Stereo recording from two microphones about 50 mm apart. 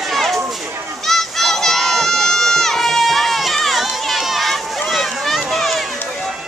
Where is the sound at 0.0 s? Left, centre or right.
Centre.